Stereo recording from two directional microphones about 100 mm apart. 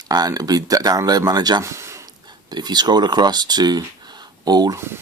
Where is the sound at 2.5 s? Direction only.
45° right (ahead or behind).